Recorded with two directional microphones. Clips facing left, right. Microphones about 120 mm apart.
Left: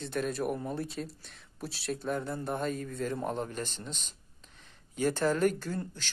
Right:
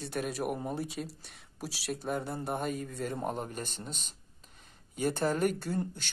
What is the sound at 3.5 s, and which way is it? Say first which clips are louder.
Speech: left 2 dB; 45° right (ahead or behind).